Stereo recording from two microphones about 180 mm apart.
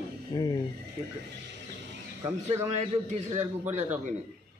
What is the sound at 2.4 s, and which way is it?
Speech, 35° right (ahead or behind).